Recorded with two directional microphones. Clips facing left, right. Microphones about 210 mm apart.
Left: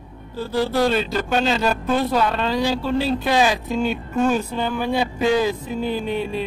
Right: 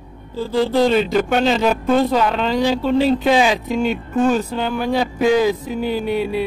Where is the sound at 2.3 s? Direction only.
15° right (ahead or behind).